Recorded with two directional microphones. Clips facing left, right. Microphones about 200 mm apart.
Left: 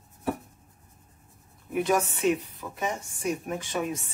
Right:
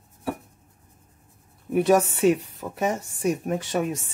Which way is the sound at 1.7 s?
35° right (ahead or behind).